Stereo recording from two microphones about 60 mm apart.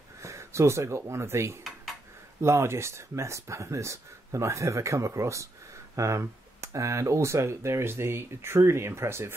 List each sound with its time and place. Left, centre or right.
0.2 s speech: right